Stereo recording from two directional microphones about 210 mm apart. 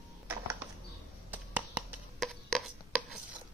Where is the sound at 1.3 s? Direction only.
10° right (ahead or behind).